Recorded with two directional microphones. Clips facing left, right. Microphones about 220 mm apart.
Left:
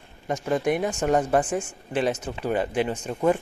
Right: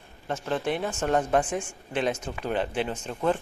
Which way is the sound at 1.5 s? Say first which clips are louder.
Left 3 dB; 10° right (ahead or behind).